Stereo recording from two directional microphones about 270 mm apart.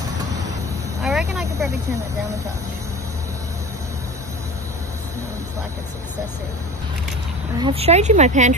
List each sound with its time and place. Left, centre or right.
1.0 s vehicle: centre
7.5 s speech: centre